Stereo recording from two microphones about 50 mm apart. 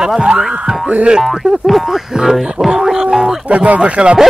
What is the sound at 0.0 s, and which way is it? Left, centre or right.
Speech, centre.